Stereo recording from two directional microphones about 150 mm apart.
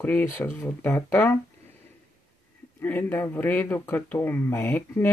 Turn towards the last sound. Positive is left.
turn(degrees=15)  # may be behind; listen again after turning